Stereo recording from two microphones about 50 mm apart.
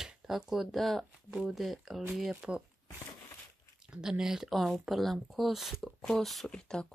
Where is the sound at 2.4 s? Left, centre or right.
Right.